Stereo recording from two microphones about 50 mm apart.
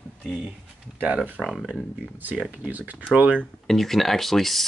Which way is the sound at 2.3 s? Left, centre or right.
Right.